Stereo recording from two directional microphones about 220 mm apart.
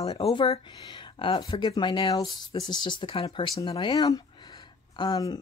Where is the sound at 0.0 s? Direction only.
25° left (ahead or behind).